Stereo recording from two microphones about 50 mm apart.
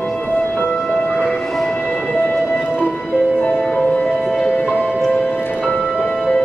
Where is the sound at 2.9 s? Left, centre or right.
Centre.